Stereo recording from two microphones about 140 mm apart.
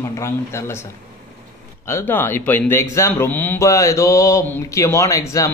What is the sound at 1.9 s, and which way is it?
Speech, 15° left (ahead or behind).